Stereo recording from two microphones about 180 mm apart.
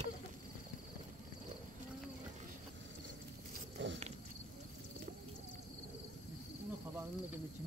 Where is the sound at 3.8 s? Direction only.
90° right.